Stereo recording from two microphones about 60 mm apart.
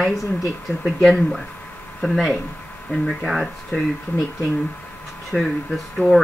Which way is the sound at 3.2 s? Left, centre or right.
Centre.